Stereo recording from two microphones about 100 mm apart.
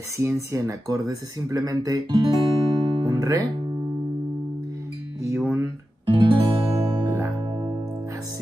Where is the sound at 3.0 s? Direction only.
35° right (ahead or behind).